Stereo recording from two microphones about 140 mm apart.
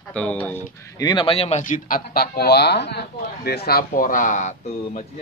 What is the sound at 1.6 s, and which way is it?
Speech, 75° left (ahead or behind).